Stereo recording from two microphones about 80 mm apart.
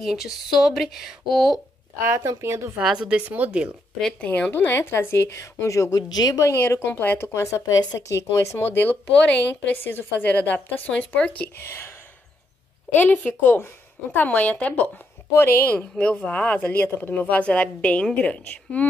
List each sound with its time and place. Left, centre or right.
0.0 s speech: centre
2.4 s speech: right
2.8 s a woman's voice: centre
4.0 s speech: centre; by 7.6 s left
7.6 s a woman's voice: left
8.1 s a woman's voice: left; by 11.4 s centre
11.6 s speech: left
12.9 s a woman's voice: left